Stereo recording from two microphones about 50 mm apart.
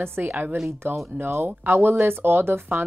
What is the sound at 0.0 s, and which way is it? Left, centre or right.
Speech, right.